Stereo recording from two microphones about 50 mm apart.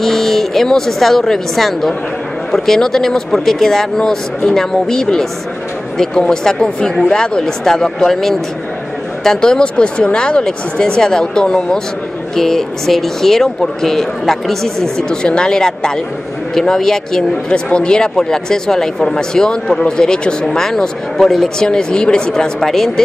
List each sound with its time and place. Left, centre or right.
0.0 s speech: centre
15.0 s speech: centre
17.5 s speech: left
21.6 s speech: centre